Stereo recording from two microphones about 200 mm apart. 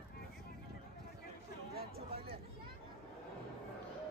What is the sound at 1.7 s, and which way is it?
Chatter, 50° right (ahead or behind).